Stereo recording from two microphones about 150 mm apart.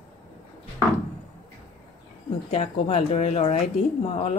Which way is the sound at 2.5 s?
45° left (ahead or behind).